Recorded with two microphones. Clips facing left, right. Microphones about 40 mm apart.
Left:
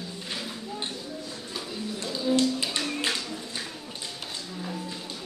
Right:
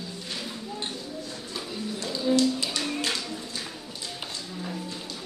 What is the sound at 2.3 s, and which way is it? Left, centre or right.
Music, left.